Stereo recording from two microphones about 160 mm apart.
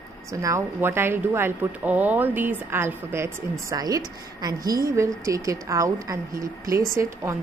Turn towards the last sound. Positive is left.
turn(degrees=-20)  # may be behind; listen again after turning